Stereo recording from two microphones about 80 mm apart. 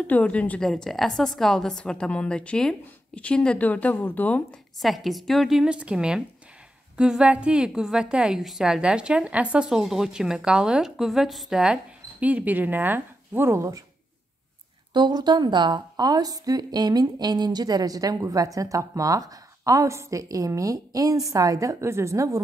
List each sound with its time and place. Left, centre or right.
0.0 s a woman's voice: centre
0.7 s a woman's voice: centre
4.8 s a woman's voice: centre
5.7 s a woman's voice: centre
9.7 s a woman's voice: centre; by 13.8 s right
14.9 s a woman's voice: right